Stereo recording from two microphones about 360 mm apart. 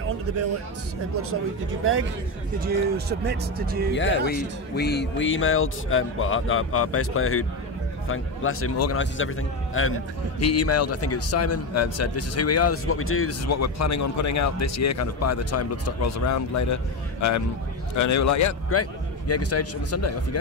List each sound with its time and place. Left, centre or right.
2.6 s speech: right
3.9 s a man's voice: left